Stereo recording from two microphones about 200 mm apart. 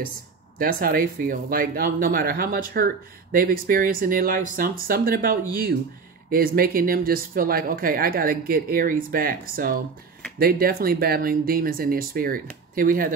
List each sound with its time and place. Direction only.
0.6 s speech: 45° right (ahead or behind)